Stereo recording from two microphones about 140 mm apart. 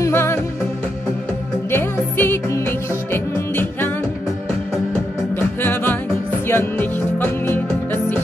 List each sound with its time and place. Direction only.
0.0 s music: 15° left (ahead or behind)
1.7 s music: 15° left (ahead or behind)
5.6 s music: 15° left (ahead or behind)